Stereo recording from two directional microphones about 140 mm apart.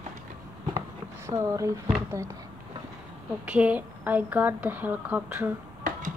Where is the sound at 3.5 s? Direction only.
10° right (ahead or behind).